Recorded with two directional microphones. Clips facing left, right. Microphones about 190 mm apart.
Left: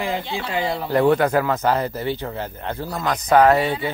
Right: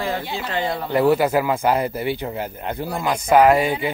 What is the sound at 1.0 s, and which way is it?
Speech, 5° right (ahead or behind).